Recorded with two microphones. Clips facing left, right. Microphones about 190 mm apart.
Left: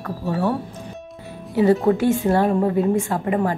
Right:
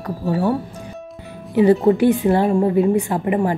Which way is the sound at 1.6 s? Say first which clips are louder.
Right 3 dB; 15° right (ahead or behind).